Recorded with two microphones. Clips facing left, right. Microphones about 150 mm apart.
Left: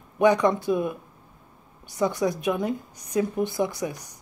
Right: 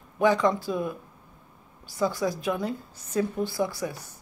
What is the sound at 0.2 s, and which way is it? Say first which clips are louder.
A woman's voice: left 3 dB; 20° left (ahead or behind).